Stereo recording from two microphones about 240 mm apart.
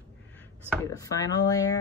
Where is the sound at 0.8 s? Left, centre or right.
Centre.